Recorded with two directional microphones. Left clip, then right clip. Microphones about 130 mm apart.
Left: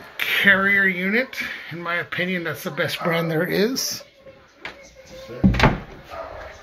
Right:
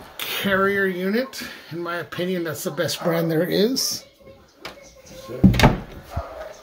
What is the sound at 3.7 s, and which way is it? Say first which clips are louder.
Speech: right 2 dB; 35° right (ahead or behind).